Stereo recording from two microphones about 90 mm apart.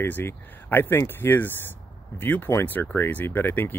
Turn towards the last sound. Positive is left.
turn(degrees=20)  # may be behind; listen again after turning